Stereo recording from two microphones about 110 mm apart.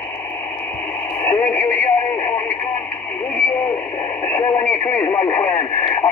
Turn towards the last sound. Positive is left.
turn(degrees=20)  # may be behind; listen again after turning